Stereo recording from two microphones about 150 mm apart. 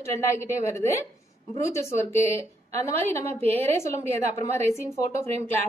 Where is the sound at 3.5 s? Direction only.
20° left (ahead or behind).